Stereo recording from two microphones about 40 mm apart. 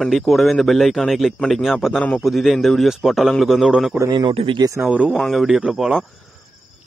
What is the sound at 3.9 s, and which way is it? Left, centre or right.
Speech, right.